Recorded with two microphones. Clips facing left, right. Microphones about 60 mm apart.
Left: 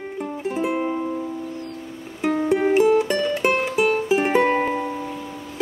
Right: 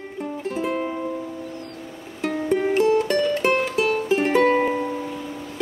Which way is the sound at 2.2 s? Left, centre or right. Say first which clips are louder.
Left 3 dB; centre.